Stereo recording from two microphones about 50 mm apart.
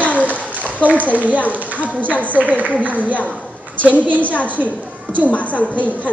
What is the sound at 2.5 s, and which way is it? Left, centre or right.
Speech, left.